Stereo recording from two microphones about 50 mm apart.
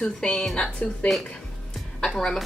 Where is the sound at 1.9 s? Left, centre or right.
Centre.